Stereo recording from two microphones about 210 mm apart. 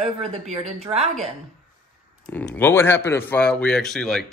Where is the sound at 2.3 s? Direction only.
10° left (ahead or behind).